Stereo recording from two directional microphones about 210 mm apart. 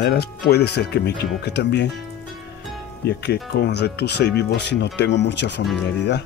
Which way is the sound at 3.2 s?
50° left (ahead or behind).